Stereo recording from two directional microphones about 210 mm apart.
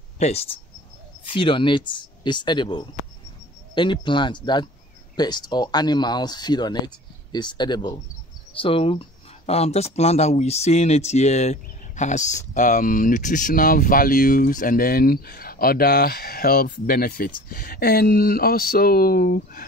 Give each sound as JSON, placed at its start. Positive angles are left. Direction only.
{"t": 0.2, "sound": "speech", "side_deg": 30}